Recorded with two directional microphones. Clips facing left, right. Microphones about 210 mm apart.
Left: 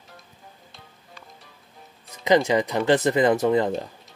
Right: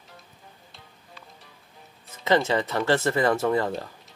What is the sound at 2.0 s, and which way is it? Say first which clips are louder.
Speech: left 3 dB; 15° left (ahead or behind).